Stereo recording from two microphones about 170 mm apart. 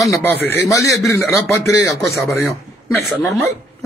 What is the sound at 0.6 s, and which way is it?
Speech, centre (ahead or behind).